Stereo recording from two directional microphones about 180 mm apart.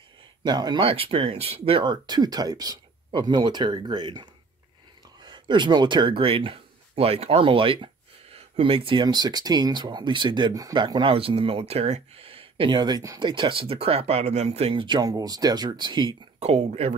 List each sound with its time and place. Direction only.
0.4 s speech: 25° right (ahead or behind)
16.3 s speech: 35° right (ahead or behind)